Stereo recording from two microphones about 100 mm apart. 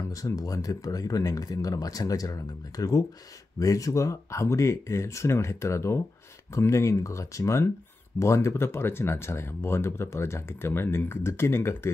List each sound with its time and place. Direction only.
0.0 s speech: 35° left (ahead or behind)